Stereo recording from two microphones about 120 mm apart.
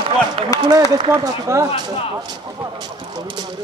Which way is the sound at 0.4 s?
50° right (ahead or behind).